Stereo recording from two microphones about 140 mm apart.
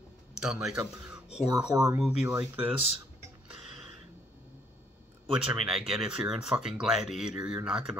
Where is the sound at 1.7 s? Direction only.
25° right (ahead or behind).